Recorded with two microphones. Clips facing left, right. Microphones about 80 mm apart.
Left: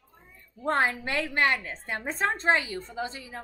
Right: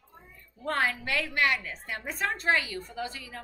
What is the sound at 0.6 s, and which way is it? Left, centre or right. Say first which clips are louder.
A woman's voice: left 3 dB; left.